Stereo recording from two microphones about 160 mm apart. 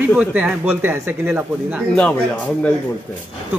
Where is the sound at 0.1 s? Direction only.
10° right (ahead or behind).